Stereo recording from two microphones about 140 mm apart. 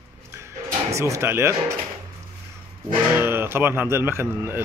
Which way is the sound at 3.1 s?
15° right (ahead or behind).